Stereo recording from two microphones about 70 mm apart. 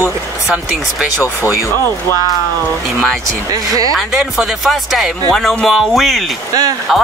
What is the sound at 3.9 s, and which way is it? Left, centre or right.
Speech, centre.